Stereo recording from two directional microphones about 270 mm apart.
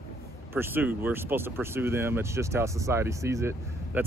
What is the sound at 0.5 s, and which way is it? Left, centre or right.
Speech, centre.